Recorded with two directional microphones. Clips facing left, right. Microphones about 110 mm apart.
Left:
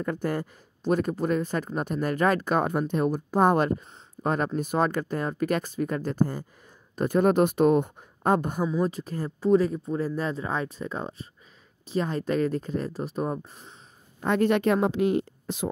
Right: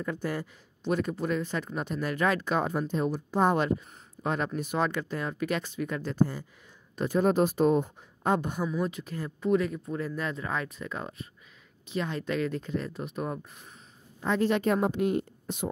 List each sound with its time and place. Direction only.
0.0 s speech: 45° left (ahead or behind); by 7.9 s 65° left (ahead or behind)
8.2 s a woman's voice: 45° left (ahead or behind)
8.6 s speech: 35° left (ahead or behind)
14.2 s a woman's voice: 60° left (ahead or behind); by 15.7 s 90° left